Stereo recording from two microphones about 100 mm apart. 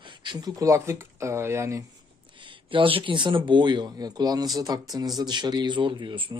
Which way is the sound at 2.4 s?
55° right (ahead or behind).